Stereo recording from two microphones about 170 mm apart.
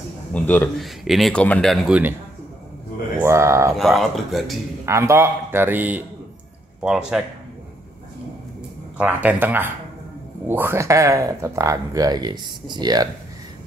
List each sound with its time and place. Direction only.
0.3 s speech: 10° left (ahead or behind)
3.2 s speech: 15° right (ahead or behind)
3.7 s speech: centre (ahead or behind)
4.8 s a man's voice: 15° right (ahead or behind)
8.9 s a man's voice: 10° right (ahead or behind); by 13.1 s 25° right (ahead or behind)